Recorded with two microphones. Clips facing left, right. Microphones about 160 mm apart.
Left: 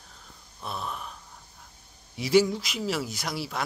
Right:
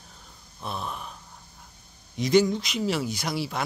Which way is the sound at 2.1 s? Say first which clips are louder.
Right 1 dB; 5° left (ahead or behind).